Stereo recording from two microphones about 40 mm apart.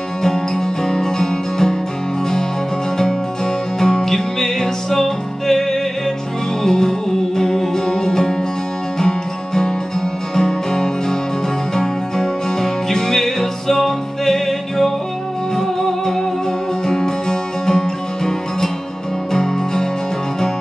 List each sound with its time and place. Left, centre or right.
0.8 s music: centre
3.8 s music: centre